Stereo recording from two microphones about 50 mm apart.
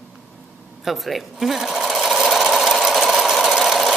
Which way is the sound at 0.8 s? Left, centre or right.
Centre.